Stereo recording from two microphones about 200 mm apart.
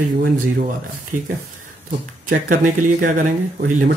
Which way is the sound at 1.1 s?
40° right (ahead or behind).